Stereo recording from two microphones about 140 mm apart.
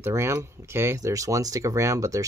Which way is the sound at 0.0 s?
20° right (ahead or behind).